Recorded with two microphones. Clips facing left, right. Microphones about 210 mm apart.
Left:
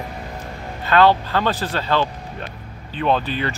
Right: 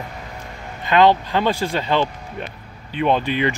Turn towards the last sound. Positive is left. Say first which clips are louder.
# right 2 dB
turn(degrees=-15)  # may be behind; listen again after turning